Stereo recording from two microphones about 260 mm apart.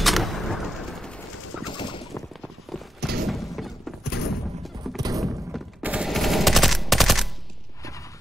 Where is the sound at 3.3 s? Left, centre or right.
Centre.